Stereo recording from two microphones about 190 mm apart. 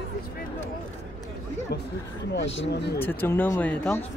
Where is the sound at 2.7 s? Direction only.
60° left (ahead or behind).